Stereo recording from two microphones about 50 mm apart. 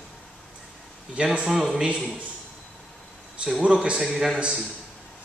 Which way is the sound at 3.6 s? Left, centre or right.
Centre.